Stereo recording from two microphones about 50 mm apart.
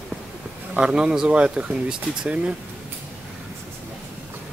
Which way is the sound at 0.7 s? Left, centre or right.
Centre.